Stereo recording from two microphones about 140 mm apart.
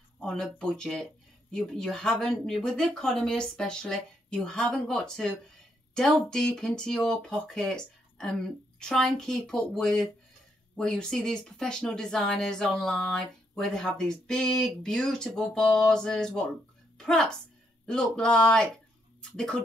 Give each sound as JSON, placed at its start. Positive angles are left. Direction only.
{"t": 0.2, "sound": "speech", "side_deg": 5}